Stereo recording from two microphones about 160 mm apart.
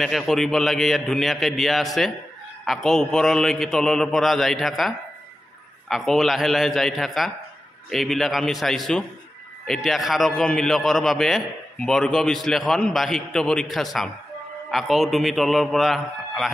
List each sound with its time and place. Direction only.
0.0 s a man's voice: centre (ahead or behind)